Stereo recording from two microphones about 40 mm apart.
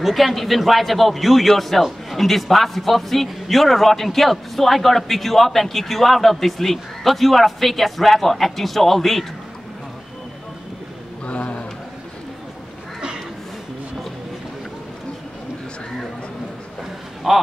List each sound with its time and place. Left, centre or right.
0.0 s a man's voice: centre
11.2 s a sound: left
17.3 s a man's voice: centre